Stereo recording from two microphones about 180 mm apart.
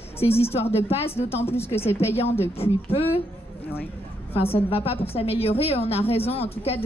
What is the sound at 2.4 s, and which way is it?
Speech, 35° left (ahead or behind).